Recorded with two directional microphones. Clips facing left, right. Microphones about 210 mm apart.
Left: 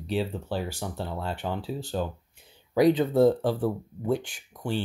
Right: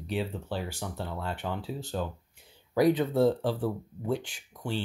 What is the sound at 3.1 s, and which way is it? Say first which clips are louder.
Speech: left 4 dB; 50° left (ahead or behind).